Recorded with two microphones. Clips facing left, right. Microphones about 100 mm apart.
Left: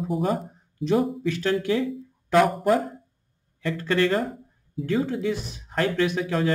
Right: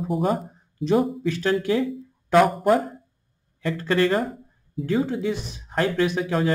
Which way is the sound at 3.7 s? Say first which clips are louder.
Right 1 dB; 25° right (ahead or behind).